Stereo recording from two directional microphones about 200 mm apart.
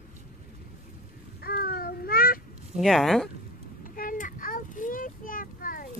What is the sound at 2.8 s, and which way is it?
Speech, centre (ahead or behind).